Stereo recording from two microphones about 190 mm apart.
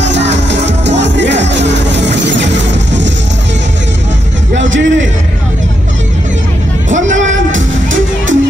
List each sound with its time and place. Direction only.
0.0 s music: 70° right (ahead or behind)
4.6 s music: 80° right
6.9 s music: 40° right (ahead or behind)
7.5 s music: 90° right